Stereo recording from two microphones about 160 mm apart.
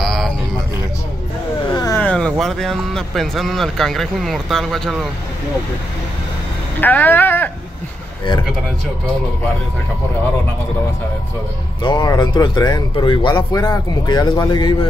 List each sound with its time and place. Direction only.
0.0 s a sound: centre (ahead or behind)
1.7 s vehicle: 25° left (ahead or behind)
2.0 s speech: 5° left (ahead or behind)
6.8 s speech: 10° left (ahead or behind)
11.8 s speech: 25° left (ahead or behind)